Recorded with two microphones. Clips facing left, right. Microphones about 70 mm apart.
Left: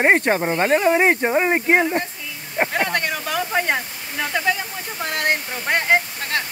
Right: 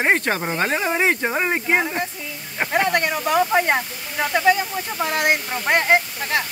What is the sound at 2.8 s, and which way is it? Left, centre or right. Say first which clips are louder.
Speech: right 2 dB; centre.